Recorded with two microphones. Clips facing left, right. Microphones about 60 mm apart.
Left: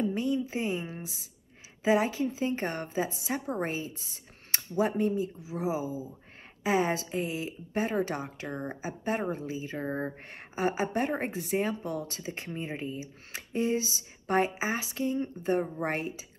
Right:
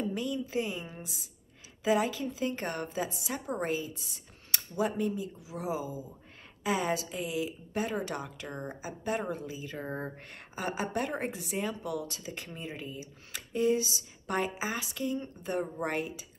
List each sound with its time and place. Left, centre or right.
0.0 s a woman's voice: left